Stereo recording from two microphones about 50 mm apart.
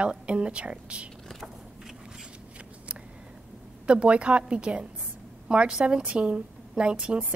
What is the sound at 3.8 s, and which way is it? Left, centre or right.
A woman's voice, right.